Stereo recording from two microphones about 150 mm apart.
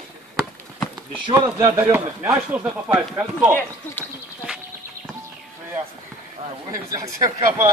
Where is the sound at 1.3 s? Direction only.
15° right (ahead or behind).